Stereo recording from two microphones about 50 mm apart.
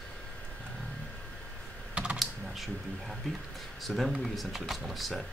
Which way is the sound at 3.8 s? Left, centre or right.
Centre.